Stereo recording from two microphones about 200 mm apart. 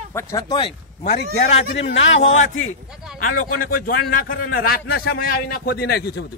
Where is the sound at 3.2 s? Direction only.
40° left (ahead or behind).